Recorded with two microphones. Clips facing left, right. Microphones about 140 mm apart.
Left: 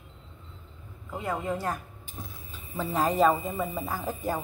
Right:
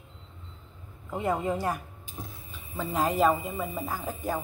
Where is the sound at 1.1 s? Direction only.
20° right (ahead or behind).